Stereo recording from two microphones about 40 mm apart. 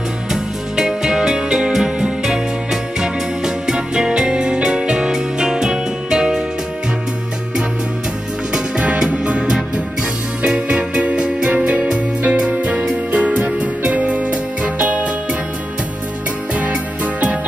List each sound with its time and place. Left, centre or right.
0.3 s music: centre
8.7 s music: right
16.5 s music: right